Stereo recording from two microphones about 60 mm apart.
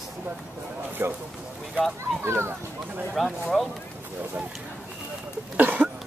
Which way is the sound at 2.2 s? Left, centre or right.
Right.